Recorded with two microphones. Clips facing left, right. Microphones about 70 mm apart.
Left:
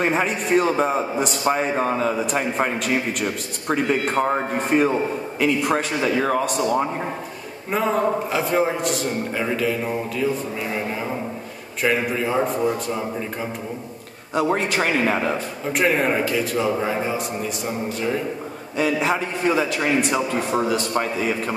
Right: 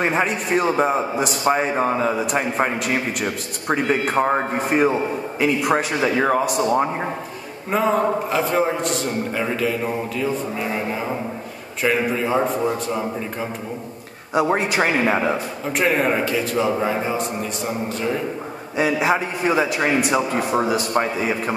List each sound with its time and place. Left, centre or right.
0.0 s a man's voice: centre; by 4.6 s right
4.7 s a man's voice: centre
6.4 s a man's voice: centre
6.8 s a man's voice: right
7.7 s a man's voice: centre
14.3 s a man's voice: centre
15.7 s a man's voice: centre; by 20.0 s right
20.0 s a man's voice: centre